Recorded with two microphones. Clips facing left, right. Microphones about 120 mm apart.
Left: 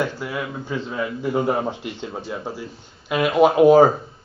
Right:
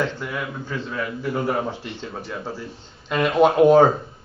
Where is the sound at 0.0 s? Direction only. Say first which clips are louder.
Left 1 dB; 10° left (ahead or behind).